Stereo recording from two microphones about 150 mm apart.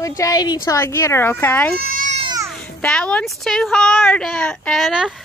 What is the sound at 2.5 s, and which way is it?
A woman's voice, 5° left (ahead or behind).